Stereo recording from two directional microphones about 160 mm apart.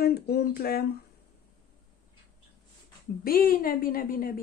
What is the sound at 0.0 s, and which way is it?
Speech, 80° left.